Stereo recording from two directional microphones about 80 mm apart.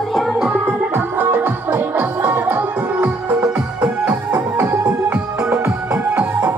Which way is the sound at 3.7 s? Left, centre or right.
Centre.